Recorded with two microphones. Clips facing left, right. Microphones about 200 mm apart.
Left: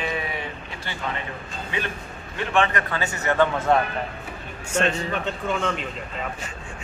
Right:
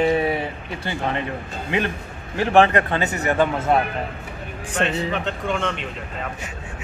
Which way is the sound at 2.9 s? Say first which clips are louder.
Right 3 dB; 20° right (ahead or behind).